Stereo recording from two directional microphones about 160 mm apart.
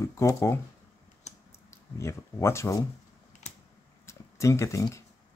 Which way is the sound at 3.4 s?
45° left (ahead or behind).